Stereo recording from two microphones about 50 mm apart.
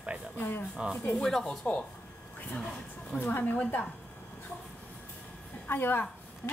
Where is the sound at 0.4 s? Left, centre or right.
Left.